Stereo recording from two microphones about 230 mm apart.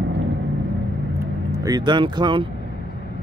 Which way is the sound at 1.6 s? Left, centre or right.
Centre.